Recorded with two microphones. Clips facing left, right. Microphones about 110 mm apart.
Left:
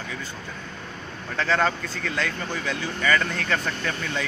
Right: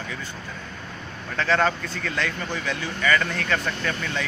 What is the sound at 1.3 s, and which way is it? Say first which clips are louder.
Speech: right 1 dB; centre (ahead or behind).